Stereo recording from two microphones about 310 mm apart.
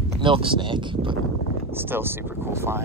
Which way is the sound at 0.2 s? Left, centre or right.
Centre.